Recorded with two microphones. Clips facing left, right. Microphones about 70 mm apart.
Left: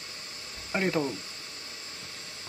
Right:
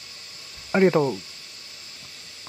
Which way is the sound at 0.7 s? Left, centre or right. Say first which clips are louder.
Right 9 dB; right.